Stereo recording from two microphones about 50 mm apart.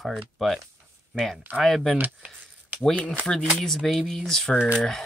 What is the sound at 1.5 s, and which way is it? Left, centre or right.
Speech, right.